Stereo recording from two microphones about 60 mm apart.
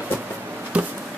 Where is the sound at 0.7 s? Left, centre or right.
Centre.